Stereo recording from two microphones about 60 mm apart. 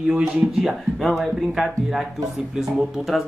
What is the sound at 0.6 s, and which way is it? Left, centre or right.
Speech, centre.